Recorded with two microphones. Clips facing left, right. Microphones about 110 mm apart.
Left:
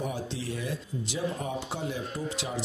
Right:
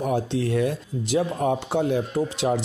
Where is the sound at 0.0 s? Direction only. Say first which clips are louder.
Right 10 dB; 60° right (ahead or behind).